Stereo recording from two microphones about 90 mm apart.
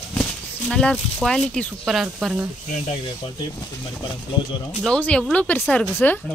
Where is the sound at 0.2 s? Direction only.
5° left (ahead or behind).